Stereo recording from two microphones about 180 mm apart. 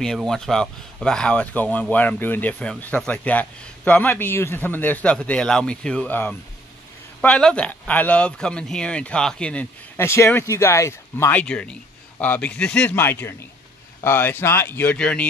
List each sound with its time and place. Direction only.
0.0 s speech: centre (ahead or behind)